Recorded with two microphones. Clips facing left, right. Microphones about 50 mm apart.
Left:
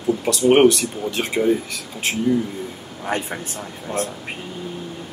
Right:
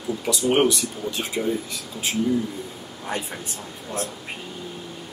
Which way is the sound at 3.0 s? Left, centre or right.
Left.